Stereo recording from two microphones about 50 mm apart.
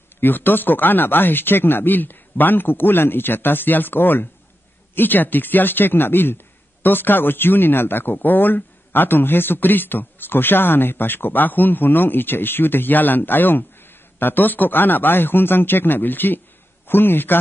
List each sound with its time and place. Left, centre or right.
0.2 s a man's voice: left